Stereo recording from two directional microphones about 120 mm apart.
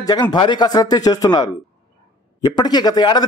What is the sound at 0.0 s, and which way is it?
Speech, 35° left (ahead or behind).